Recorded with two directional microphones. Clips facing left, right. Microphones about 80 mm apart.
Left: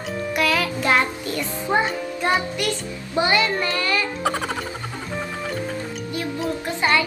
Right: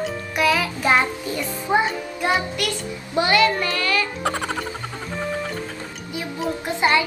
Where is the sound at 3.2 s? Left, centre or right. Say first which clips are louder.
Right 2 dB; centre.